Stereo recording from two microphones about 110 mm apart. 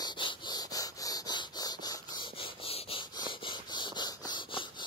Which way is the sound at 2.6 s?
60° left (ahead or behind).